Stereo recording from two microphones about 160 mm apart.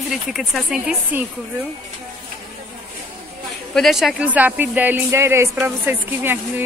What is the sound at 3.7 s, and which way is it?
Speech, centre (ahead or behind).